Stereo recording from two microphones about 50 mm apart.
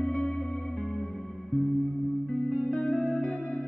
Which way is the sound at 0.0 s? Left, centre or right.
Centre.